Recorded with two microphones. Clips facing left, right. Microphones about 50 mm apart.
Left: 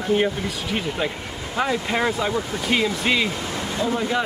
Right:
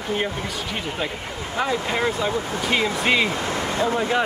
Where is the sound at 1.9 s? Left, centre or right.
Centre.